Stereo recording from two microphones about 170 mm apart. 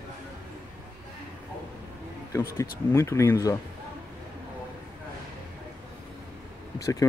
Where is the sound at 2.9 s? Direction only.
15° left (ahead or behind).